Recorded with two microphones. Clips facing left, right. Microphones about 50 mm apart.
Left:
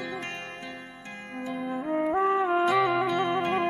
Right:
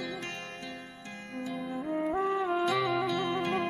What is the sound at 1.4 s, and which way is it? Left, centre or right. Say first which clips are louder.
Music: left 3 dB; centre.